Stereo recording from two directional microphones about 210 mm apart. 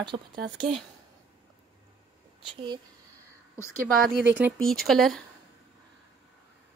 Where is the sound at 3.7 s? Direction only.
45° right (ahead or behind).